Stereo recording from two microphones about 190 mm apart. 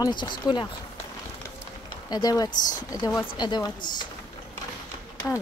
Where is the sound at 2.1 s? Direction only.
20° left (ahead or behind).